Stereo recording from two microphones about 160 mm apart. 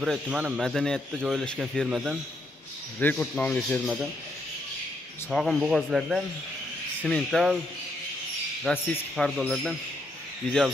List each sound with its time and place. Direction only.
0.0 s speech: 5° right (ahead or behind)
3.0 s speech: 10° left (ahead or behind)
5.3 s speech: centre (ahead or behind)
8.6 s speech: 5° left (ahead or behind)